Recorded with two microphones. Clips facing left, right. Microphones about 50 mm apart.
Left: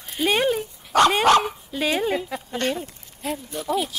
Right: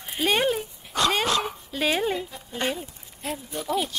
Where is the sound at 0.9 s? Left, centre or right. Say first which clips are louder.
Left 8 dB; left.